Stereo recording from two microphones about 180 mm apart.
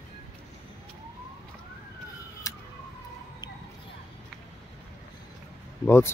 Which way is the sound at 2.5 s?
15° left (ahead or behind).